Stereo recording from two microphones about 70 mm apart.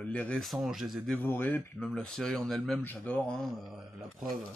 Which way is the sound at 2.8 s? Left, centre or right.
Left.